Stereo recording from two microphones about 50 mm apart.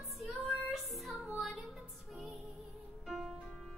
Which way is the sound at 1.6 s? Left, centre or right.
Centre.